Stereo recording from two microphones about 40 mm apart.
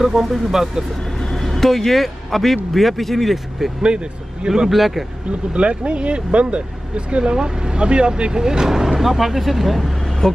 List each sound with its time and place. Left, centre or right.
0.0 s speech: centre
1.4 s a man's voice: centre
3.8 s speech: right
4.6 s a man's voice: centre
5.5 s speech: right; by 9.9 s centre
10.2 s speech: centre